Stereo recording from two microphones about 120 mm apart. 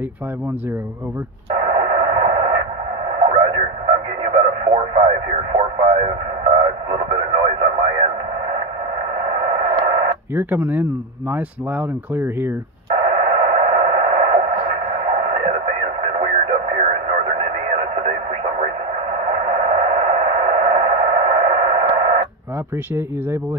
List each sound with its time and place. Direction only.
1.6 s radio: 50° right (ahead or behind)
6.5 s radio: 50° right (ahead or behind)
9.3 s radio: 55° right (ahead or behind)
10.3 s speech: 15° right (ahead or behind)
13.1 s a sound: 55° right (ahead or behind)
19.4 s a sound: 60° right (ahead or behind)